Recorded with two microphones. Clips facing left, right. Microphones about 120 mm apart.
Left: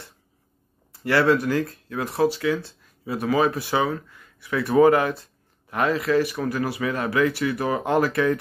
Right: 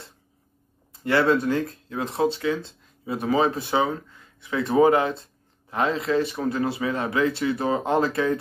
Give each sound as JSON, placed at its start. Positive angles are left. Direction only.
{"t": 1.0, "sound": "speech", "side_deg": -25}